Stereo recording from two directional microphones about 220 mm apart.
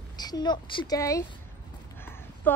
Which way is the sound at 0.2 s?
20° left (ahead or behind).